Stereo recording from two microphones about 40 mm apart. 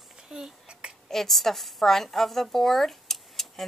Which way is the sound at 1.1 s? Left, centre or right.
Centre.